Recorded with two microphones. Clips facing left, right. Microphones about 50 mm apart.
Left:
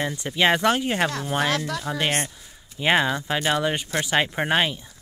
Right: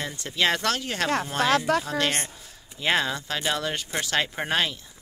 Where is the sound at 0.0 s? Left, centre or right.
Centre.